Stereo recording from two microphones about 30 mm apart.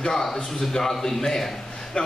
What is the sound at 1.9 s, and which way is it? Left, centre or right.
Speech, left.